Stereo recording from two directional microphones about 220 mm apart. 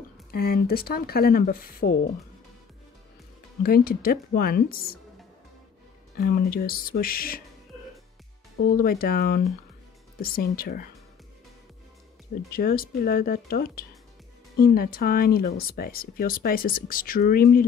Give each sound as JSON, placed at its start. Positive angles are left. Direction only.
{"t": 0.3, "sound": "speech", "side_deg": 45}
{"t": 3.6, "sound": "speech", "side_deg": 45}
{"t": 6.1, "sound": "speech", "side_deg": 45}
{"t": 8.6, "sound": "speech", "side_deg": 40}
{"t": 12.4, "sound": "speech", "side_deg": 40}